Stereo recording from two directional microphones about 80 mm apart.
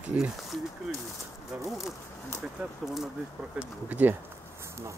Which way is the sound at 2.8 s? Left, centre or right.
Centre.